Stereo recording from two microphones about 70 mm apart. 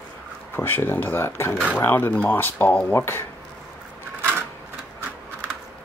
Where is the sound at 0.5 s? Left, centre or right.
Left.